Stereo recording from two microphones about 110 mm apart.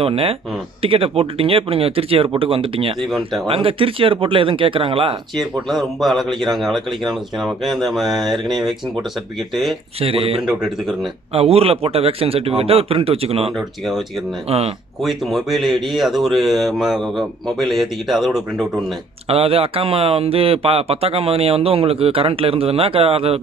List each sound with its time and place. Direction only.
0.0 s speech: 60° right (ahead or behind)
3.1 s speech: centre (ahead or behind)
3.4 s speech: 55° right (ahead or behind)
5.4 s speech: centre (ahead or behind)
9.9 s speech: 60° right (ahead or behind)
10.4 s a man's voice: 5° right (ahead or behind)
11.3 s speech: 65° right (ahead or behind)
15.0 s speech: centre (ahead or behind)
19.2 s speech: 60° right (ahead or behind)